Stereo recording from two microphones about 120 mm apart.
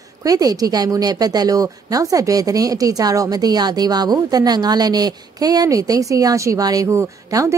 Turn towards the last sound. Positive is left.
turn(degrees=-25)  # may be behind; listen again after turning